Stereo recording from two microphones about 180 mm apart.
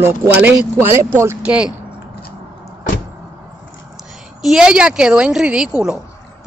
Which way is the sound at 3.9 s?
Centre (ahead or behind).